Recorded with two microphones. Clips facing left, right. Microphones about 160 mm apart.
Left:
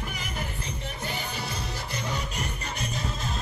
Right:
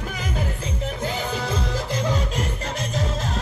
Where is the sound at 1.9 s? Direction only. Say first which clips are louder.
Right 8 dB; 90° right.